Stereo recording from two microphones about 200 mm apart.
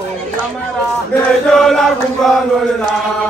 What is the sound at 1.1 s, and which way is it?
Chant, centre (ahead or behind).